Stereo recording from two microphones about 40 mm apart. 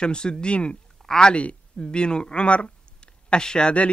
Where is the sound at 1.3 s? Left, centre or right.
Left.